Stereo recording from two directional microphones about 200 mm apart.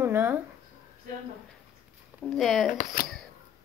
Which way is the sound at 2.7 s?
45° left (ahead or behind).